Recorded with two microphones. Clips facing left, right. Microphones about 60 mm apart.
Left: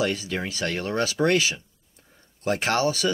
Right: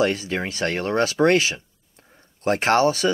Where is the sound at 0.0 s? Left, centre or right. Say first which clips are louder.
Right 4 dB; right.